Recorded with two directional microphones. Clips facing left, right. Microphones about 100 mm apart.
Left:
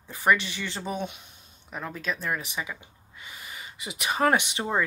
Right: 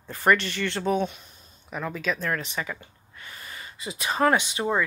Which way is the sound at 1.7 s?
Centre (ahead or behind).